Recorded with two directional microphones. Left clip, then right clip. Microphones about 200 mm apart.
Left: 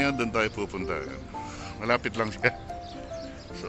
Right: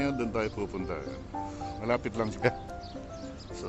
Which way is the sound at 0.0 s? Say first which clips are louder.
Left 5 dB; 5° right (ahead or behind).